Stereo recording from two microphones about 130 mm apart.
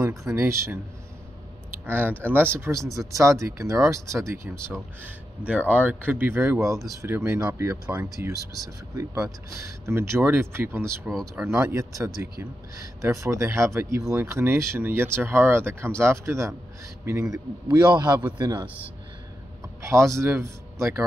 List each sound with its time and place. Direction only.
0.0 s speech: 25° right (ahead or behind)
1.9 s speech: 15° right (ahead or behind)
4.6 s speech: 5° left (ahead or behind)
5.0 s speech: 10° right (ahead or behind)
7.9 s speech: 15° right (ahead or behind)
8.9 s speech: 25° right (ahead or behind)
11.1 s speech: centre (ahead or behind)
11.4 s speech: 25° right (ahead or behind)
19.8 s a man's voice: 25° right (ahead or behind)